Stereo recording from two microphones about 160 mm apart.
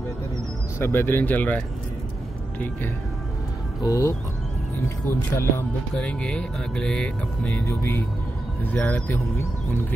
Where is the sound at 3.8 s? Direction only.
20° left (ahead or behind).